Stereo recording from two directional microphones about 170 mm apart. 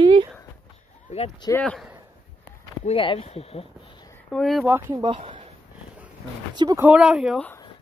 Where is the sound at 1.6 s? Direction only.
Centre (ahead or behind).